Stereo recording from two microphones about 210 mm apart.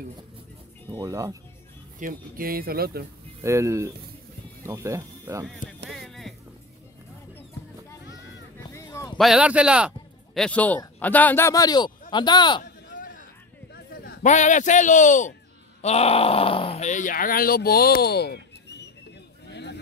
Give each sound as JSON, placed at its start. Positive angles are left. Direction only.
{"t": 0.9, "sound": "speech", "side_deg": -15}
{"t": 2.0, "sound": "speech", "side_deg": -40}
{"t": 3.4, "sound": "speech", "side_deg": -15}
{"t": 5.9, "sound": "music", "side_deg": 0}
{"t": 8.7, "sound": "a sound", "side_deg": 15}
{"t": 9.2, "sound": "a man's voice", "side_deg": -5}
{"t": 12.6, "sound": "a sound", "side_deg": 40}
{"t": 14.2, "sound": "speech", "side_deg": 35}
{"t": 19.5, "sound": "a sound", "side_deg": 55}